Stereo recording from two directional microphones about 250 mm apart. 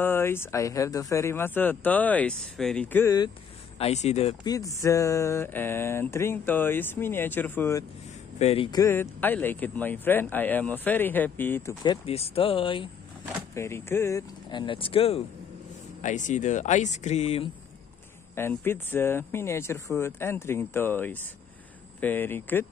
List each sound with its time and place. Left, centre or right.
0.0 s speech: centre
3.7 s speech: left
4.6 s speech: centre
8.4 s speech: left
18.3 s speech: centre